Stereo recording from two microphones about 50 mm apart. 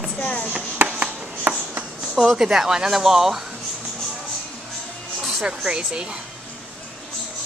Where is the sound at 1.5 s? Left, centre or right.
Right.